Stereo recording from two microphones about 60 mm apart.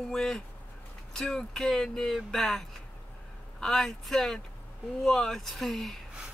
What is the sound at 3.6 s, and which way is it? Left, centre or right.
Speech, centre.